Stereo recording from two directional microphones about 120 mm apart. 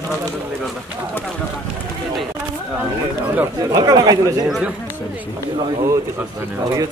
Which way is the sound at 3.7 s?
35° right (ahead or behind).